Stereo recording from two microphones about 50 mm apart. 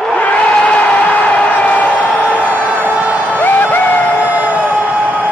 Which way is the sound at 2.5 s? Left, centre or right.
Right.